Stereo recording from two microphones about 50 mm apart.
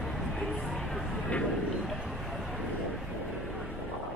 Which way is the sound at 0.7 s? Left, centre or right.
Centre.